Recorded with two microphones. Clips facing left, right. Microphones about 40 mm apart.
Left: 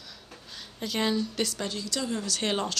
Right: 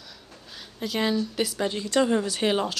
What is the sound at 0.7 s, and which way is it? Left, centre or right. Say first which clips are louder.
Speech: right 2 dB; centre.